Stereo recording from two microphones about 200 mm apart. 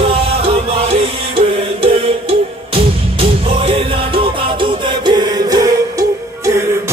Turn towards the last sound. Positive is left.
turn(degrees=-15)  # may be behind; listen again after turning